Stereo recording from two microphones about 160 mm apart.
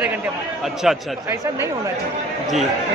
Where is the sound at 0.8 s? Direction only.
Centre (ahead or behind).